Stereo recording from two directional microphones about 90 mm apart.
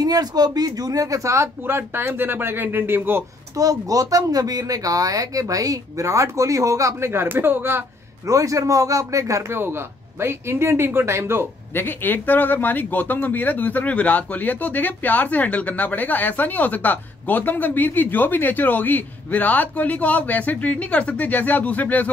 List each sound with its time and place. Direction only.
0.0 s speech: 45° right (ahead or behind); by 3.3 s 25° right (ahead or behind)
3.5 s speech: 40° right (ahead or behind); by 7.8 s 25° right (ahead or behind)
8.3 s speech: 40° right (ahead or behind)
11.7 s speech: 20° left (ahead or behind)